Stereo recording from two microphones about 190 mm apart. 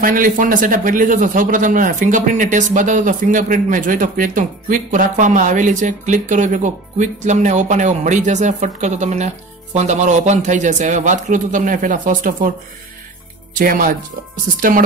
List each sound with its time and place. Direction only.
0.0 s speech: 45° right (ahead or behind)
13.6 s speech: 45° right (ahead or behind)